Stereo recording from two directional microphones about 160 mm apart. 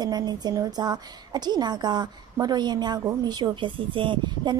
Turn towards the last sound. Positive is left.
turn(degrees=-30)  # may be behind; listen again after turning